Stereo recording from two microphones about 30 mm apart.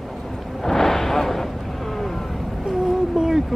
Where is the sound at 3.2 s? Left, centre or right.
Centre.